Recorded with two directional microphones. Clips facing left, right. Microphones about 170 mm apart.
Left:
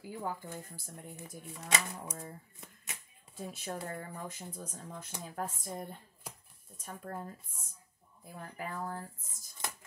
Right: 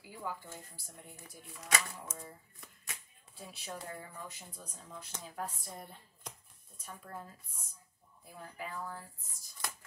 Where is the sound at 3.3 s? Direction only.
50° left (ahead or behind).